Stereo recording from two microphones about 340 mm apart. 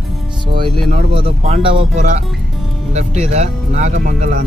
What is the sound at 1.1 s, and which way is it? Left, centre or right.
Speech, centre.